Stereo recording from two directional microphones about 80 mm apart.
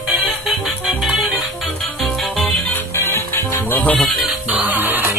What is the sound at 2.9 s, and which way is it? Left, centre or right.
Music, left.